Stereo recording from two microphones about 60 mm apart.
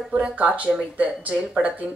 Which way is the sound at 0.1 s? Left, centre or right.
Right.